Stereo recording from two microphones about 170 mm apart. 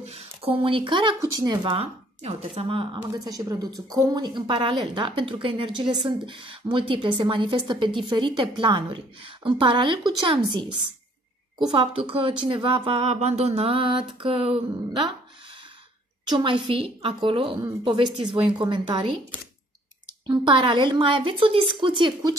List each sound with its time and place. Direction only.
0.0 s a woman's voice: 35° right (ahead or behind)
16.3 s a woman's voice: 25° right (ahead or behind)
20.2 s a woman's voice: 30° right (ahead or behind)